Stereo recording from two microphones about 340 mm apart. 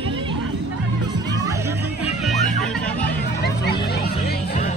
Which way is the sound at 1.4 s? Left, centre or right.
Centre.